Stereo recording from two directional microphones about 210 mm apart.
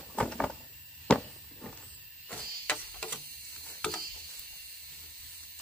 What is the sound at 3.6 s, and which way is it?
Mechanisms, 5° left (ahead or behind).